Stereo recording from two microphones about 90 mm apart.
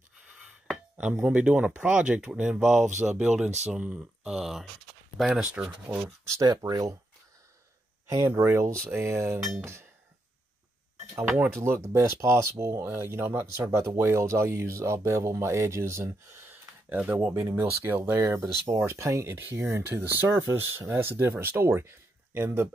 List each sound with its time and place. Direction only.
0.9 s speech: 10° right (ahead or behind)
6.2 s speech: 40° right (ahead or behind)
8.3 s speech: 30° right (ahead or behind)
11.3 s speech: 15° right (ahead or behind)
11.6 s speech: 30° right (ahead or behind)
16.9 s speech: 15° right (ahead or behind)
17.4 s speech: 30° right (ahead or behind)